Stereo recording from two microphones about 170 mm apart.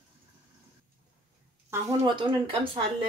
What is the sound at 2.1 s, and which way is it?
Speech, 30° right (ahead or behind).